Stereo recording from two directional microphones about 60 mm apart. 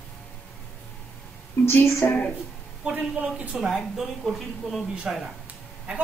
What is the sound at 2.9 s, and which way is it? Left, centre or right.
Speech, centre.